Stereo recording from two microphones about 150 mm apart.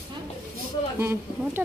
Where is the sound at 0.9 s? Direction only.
15° right (ahead or behind).